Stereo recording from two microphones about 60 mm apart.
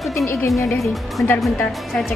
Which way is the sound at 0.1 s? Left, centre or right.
Left.